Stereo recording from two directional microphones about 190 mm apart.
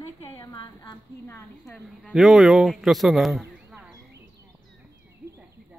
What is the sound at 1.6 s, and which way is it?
Speech, centre (ahead or behind).